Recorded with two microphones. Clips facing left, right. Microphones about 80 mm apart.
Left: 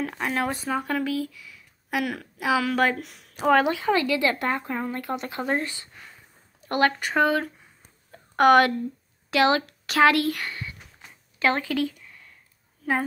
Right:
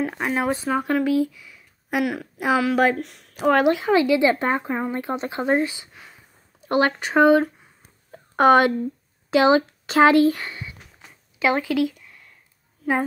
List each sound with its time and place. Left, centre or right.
0.0 s speech: centre
2.0 s a woman's voice: centre
3.9 s speech: centre
7.0 s speech: right
7.4 s a sound: centre
8.4 s speech: right
11.0 s a sound: centre